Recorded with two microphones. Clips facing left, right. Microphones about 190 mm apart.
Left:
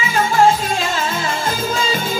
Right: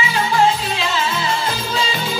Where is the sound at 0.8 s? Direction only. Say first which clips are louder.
Even; 45° left (ahead or behind).